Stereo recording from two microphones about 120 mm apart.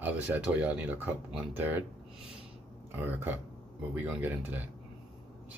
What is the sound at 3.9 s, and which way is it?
Speech, 15° right (ahead or behind).